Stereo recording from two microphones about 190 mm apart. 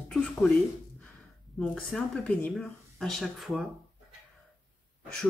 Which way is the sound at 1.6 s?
5° left (ahead or behind).